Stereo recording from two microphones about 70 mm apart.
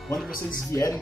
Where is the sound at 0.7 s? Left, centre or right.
Left.